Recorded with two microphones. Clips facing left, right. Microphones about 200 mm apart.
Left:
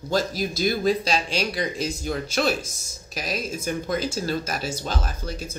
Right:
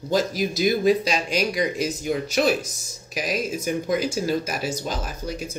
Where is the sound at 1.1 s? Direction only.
30° left (ahead or behind).